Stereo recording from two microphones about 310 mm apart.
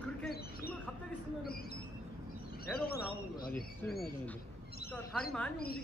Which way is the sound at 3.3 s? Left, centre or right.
Left.